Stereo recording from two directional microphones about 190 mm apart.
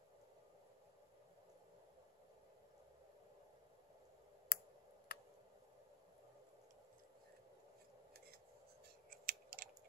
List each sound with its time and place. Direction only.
4.5 s clicking: 55° left (ahead or behind)
5.1 s a sound: 50° left (ahead or behind)
9.1 s typing: 50° right (ahead or behind)